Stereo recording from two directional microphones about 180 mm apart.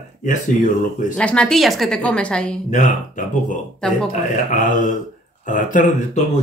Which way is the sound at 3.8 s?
5° left (ahead or behind).